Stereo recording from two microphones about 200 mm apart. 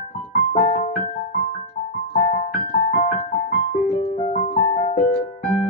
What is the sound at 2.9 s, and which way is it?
Music, 30° left (ahead or behind).